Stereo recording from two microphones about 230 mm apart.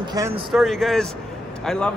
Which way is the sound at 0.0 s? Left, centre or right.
Centre.